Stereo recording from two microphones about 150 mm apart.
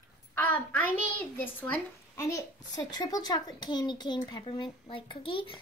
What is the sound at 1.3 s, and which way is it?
A woman's voice, 15° left (ahead or behind).